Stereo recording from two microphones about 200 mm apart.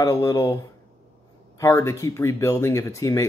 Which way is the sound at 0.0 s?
15° left (ahead or behind).